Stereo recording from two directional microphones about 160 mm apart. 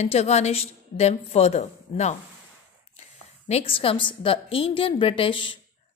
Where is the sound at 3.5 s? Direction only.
40° left (ahead or behind).